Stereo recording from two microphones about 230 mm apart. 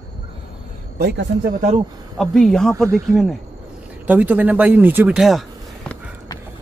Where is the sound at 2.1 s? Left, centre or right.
Centre.